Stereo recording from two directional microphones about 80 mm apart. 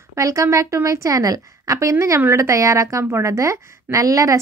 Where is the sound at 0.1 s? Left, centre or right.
Right.